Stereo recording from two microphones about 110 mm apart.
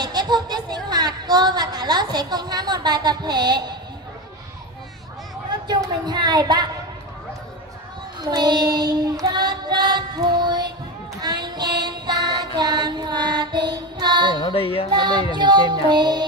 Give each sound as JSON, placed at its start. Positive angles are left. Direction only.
{"t": 0.0, "sound": "a sound", "side_deg": -40}
{"t": 5.7, "sound": "a sound", "side_deg": -40}
{"t": 8.2, "sound": "child singing", "side_deg": -40}
{"t": 12.5, "sound": "music", "side_deg": -40}
{"t": 14.3, "sound": "music", "side_deg": 55}
{"t": 14.9, "sound": "music", "side_deg": -40}
{"t": 15.3, "sound": "child singing", "side_deg": -45}